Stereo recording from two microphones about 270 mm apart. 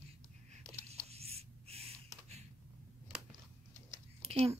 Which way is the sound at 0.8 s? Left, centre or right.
Right.